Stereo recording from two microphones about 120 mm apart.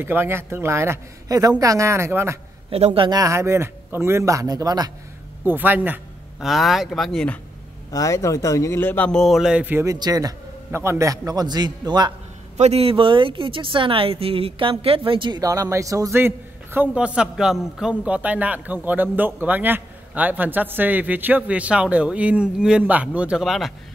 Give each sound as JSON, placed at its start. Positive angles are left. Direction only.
{"t": 0.0, "sound": "a man's voice", "side_deg": -20}
{"t": 2.7, "sound": "a man's voice", "side_deg": -55}
{"t": 3.1, "sound": "a man's voice", "side_deg": -25}
{"t": 5.4, "sound": "speech", "side_deg": -15}
{"t": 6.4, "sound": "speech", "side_deg": 0}
{"t": 7.9, "sound": "a man's voice", "side_deg": 30}
{"t": 9.8, "sound": "a man's voice", "side_deg": -30}
{"t": 12.5, "sound": "speech", "side_deg": -60}